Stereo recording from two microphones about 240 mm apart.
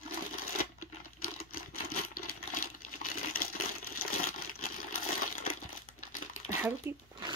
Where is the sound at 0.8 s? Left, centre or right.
Left.